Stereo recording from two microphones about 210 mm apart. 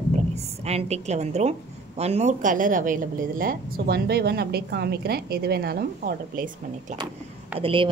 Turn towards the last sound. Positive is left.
turn(degrees=-25)  # may be behind; listen again after turning